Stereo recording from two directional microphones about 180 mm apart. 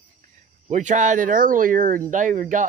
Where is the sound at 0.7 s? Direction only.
40° right (ahead or behind).